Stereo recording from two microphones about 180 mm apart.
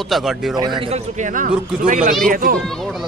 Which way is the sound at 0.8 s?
35° right (ahead or behind).